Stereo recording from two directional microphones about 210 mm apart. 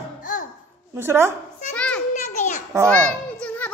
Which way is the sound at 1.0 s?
10° right (ahead or behind).